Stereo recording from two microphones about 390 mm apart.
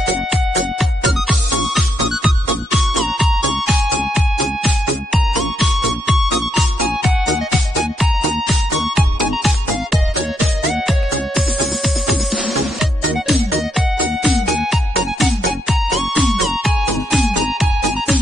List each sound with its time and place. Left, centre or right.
0.3 s music: centre
8.9 s music: centre